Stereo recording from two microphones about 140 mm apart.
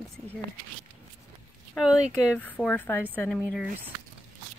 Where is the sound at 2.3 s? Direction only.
10° left (ahead or behind).